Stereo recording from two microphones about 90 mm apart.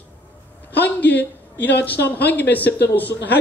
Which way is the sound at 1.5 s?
20° left (ahead or behind).